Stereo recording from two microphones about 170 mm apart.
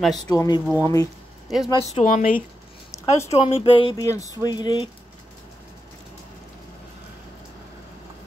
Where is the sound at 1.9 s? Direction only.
45° left (ahead or behind).